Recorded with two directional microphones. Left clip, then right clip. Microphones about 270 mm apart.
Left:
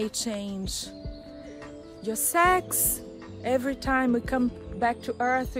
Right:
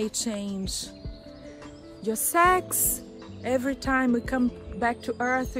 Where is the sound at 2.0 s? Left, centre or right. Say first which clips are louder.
Right 1 dB; centre.